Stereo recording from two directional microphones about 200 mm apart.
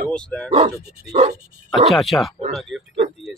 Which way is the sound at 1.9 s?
Centre (ahead or behind).